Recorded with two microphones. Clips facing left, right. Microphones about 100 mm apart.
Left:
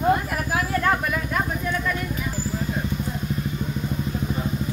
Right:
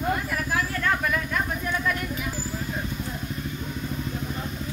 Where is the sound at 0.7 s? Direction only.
25° left (ahead or behind).